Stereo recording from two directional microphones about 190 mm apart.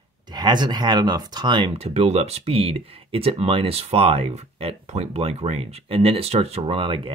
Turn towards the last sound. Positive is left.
turn(degrees=-30)  # may be behind; listen again after turning